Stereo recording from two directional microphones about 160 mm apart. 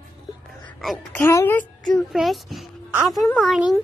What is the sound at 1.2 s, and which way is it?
A child's voice, 20° left (ahead or behind).